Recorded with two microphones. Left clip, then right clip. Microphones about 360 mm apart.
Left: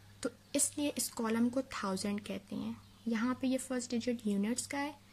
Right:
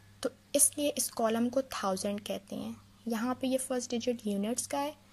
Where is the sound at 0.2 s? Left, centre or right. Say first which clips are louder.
Right 5 dB; centre.